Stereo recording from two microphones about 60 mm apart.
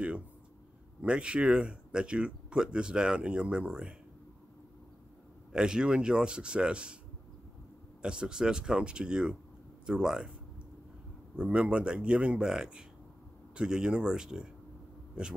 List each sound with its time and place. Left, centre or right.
1.0 s speech: centre
5.5 s speech: centre
8.0 s speech: centre
11.3 s speech: centre